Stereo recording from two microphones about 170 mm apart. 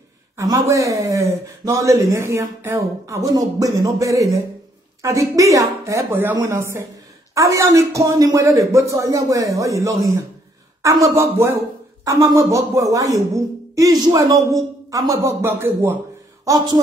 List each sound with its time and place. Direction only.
0.4 s a man's voice: 20° right (ahead or behind)